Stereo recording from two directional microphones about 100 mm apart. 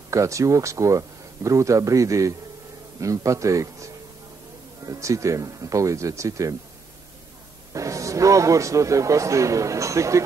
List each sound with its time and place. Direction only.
0.1 s speech: 30° right (ahead or behind)
7.7 s speech: 30° right (ahead or behind)